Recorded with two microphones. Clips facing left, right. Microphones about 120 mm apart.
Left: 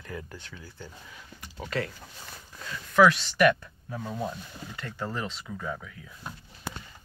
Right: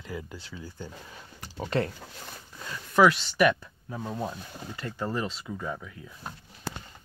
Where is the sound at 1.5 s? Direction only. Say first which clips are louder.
Right 4 dB; 30° right (ahead or behind).